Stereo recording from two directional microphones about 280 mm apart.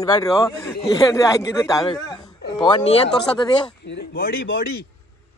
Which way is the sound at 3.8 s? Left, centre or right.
Left.